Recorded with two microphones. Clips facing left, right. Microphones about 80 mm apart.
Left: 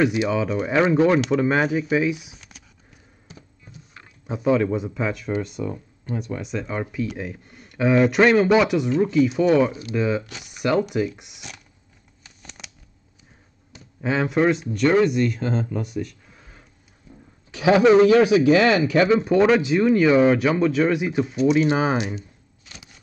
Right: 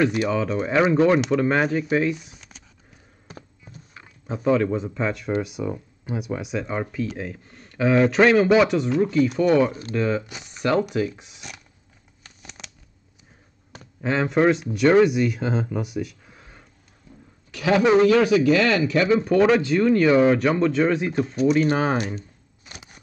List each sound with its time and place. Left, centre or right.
0.2 s speech: centre
2.3 s a sound: centre
3.3 s a sound: right
4.3 s speech: centre
12.4 s shuffling cards: centre
14.0 s speech: centre
17.5 s speech: centre
19.1 s speech: centre